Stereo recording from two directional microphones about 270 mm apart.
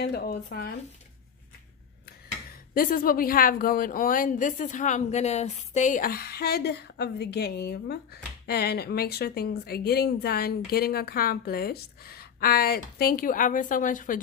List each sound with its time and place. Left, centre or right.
0.0 s speech: left
2.7 s speech: left